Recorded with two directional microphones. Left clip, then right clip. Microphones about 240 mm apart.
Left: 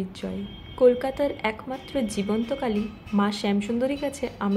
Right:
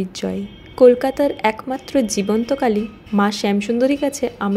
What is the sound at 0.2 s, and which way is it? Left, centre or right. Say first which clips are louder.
Speech: right 9 dB; right.